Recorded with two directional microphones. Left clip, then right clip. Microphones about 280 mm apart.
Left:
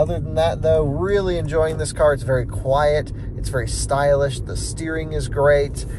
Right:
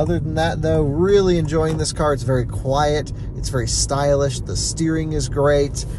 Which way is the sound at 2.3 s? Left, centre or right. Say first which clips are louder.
Left 1 dB; centre.